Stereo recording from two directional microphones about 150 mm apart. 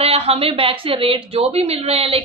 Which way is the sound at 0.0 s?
40° right (ahead or behind).